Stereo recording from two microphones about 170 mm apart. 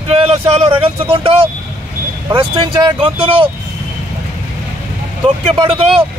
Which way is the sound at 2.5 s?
30° right (ahead or behind).